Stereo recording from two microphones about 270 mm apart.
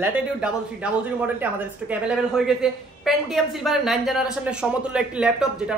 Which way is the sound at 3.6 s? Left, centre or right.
Centre.